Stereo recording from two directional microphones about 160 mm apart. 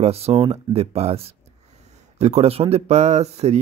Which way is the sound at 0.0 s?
40° right (ahead or behind).